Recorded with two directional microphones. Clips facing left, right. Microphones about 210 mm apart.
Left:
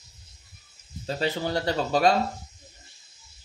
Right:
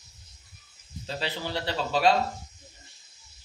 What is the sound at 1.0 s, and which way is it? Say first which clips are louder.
Speech: left 6 dB; 45° left (ahead or behind).